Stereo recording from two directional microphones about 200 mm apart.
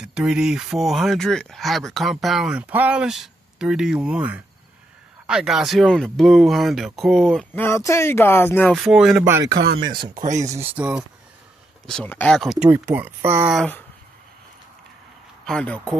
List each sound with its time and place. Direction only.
0.0 s speech: 5° right (ahead or behind); by 8.6 s 10° left (ahead or behind)
8.6 s speech: 5° right (ahead or behind)
9.2 s speech: 15° right (ahead or behind)
10.1 s speech: 35° right (ahead or behind)
10.7 s speech: 10° right (ahead or behind)
11.8 s speech: 5° left (ahead or behind)
12.6 s speech: 15° right (ahead or behind)
15.4 s speech: 5° left (ahead or behind)